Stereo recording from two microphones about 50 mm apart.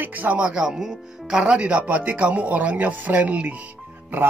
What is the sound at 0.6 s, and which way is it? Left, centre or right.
Speech, centre.